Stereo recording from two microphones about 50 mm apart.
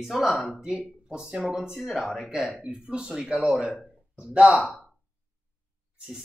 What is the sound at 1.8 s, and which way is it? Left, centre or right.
Speech, centre.